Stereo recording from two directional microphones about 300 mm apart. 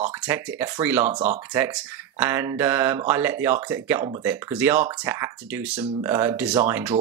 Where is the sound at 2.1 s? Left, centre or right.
Centre.